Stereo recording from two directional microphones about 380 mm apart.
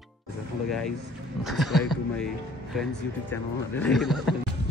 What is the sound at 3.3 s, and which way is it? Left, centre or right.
Speech, centre.